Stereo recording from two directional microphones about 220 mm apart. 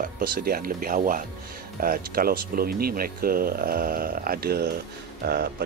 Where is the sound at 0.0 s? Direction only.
40° right (ahead or behind).